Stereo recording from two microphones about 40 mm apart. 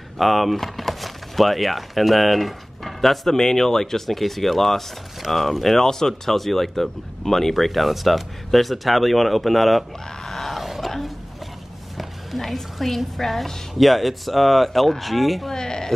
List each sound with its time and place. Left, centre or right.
0.2 s speech: centre
12.0 s speech: centre
15.5 s a sound: centre